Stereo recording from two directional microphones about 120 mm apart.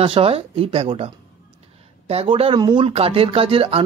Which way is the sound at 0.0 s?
50° right (ahead or behind).